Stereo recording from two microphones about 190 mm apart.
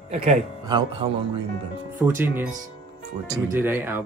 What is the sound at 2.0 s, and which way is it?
Speech, 10° right (ahead or behind).